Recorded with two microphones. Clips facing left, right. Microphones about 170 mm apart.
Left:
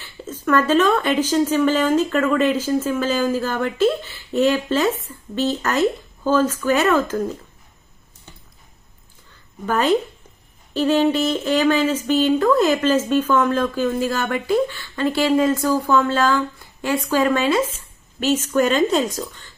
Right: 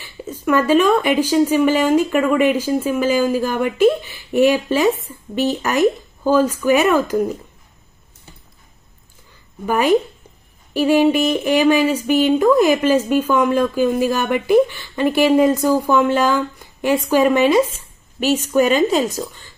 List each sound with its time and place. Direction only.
0.0 s speech: 15° right (ahead or behind)
9.7 s speech: 10° right (ahead or behind)